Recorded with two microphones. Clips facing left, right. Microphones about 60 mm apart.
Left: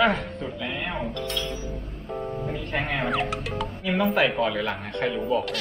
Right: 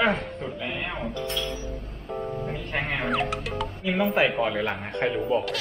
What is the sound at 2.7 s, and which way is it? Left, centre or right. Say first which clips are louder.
Speech: left 1 dB; centre.